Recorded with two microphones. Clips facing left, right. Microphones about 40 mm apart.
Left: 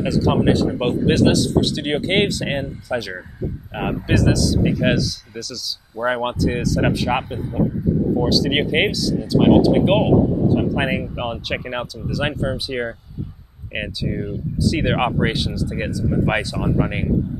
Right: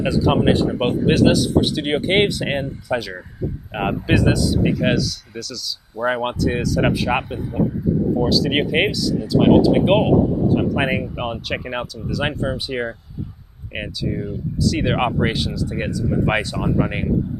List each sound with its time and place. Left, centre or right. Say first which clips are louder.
0.0 s speech: right 1 dB; right
3.7 s speech: right 1 dB; centre
4.6 s speech: even; centre
13.7 s speech: even; centre